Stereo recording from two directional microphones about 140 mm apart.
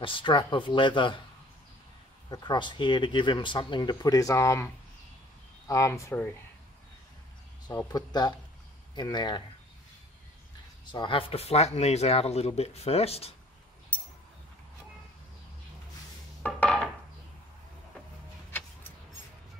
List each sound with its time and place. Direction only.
0.0 s speech: 35° left (ahead or behind)
2.2 s speech: 30° left (ahead or behind)
5.7 s speech: 20° left (ahead or behind)
7.6 s speech: 30° left (ahead or behind)
10.9 s speech: 35° left (ahead or behind)
13.9 s a sound: 10° left (ahead or behind)
16.4 s a sound: 10° left (ahead or behind)